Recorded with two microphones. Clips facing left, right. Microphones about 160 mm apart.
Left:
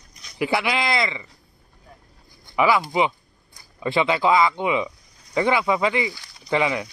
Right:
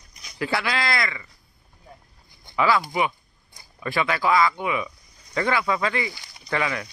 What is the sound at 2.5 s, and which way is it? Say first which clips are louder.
Speech: left 2 dB; 15° left (ahead or behind).